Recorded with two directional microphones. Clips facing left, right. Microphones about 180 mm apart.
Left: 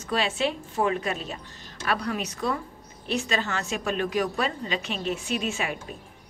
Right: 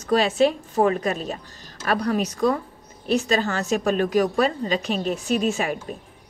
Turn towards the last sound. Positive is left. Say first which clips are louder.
# right 6 dB
turn(degrees=-40)  # may be behind; listen again after turning